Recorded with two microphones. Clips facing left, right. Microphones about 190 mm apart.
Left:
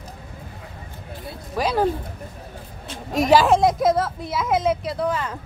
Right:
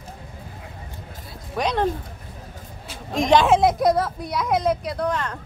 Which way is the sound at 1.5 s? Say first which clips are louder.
Left 2 dB; 5° left (ahead or behind).